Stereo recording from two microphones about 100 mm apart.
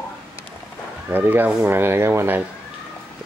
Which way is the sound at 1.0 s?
20° right (ahead or behind).